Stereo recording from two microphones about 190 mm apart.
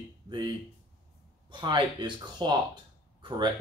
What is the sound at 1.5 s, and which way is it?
Speech, 25° right (ahead or behind).